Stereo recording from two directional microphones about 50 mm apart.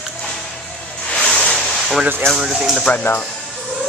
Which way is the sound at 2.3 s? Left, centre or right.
Centre.